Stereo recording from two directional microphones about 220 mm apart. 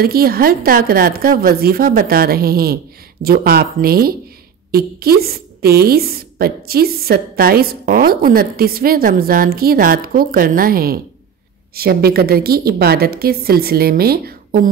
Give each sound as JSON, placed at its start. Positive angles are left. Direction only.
{"t": 0.0, "sound": "a woman's voice", "side_deg": -45}